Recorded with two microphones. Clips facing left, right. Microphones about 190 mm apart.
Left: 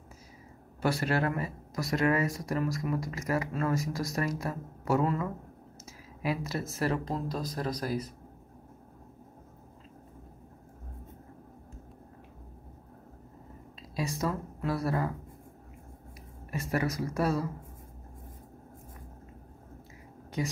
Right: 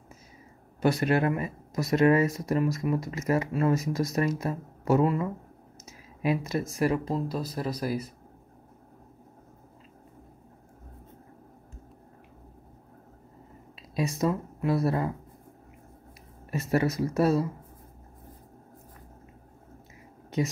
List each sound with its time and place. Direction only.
0.7 s speech: 20° right (ahead or behind)
13.9 s speech: 20° right (ahead or behind)
16.4 s speech: 25° right (ahead or behind)